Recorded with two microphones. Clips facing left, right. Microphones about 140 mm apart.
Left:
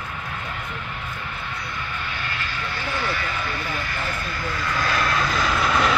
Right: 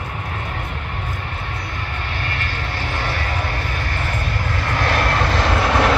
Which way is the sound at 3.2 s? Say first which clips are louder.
Right 3 dB; 30° right (ahead or behind).